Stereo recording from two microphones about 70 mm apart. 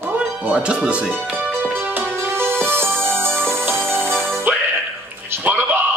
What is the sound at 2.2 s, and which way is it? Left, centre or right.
Music, right.